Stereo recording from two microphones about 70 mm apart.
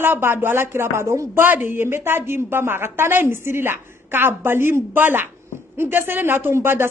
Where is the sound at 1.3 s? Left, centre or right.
Right.